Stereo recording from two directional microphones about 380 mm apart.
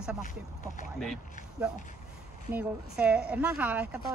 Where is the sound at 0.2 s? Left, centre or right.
Left.